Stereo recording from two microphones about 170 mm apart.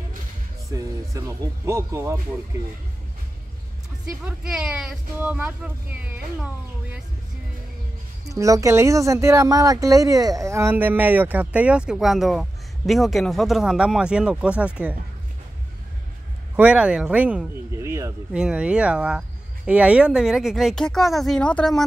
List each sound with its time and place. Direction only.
0.7 s speech: 20° right (ahead or behind)
4.5 s speech: 5° right (ahead or behind)
8.3 s speech: 20° right (ahead or behind)
16.5 s speech: 5° right (ahead or behind)
18.3 s speech: 5° right (ahead or behind)